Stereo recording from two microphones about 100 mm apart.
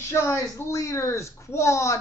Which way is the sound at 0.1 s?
25° left (ahead or behind).